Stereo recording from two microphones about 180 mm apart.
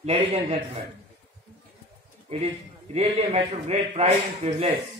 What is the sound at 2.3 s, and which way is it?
A man's voice, 35° right (ahead or behind).